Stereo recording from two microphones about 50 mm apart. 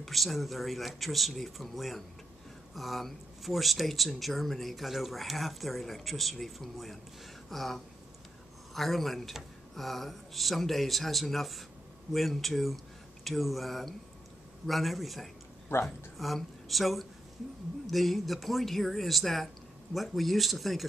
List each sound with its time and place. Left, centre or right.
0.0 s speech: centre
7.4 s a sound: centre
8.7 s speech: centre
15.7 s speech: left
16.2 s speech: centre